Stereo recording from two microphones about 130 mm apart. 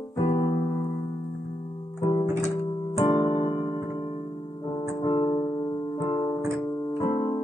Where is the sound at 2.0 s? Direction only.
40° left (ahead or behind).